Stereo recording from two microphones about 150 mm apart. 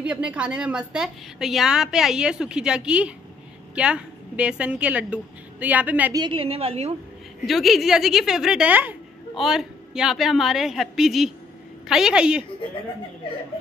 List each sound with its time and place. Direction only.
0.0 s a woman's voice: 5° right (ahead or behind)
6.1 s a woman's voice: 35° right (ahead or behind)
7.4 s a woman's voice: centre (ahead or behind)